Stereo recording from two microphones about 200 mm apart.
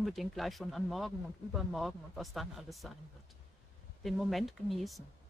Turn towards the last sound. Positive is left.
turn(degrees=0)  # may be behind; listen again after turning